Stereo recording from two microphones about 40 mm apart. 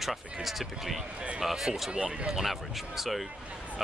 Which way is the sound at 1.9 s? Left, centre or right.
Right.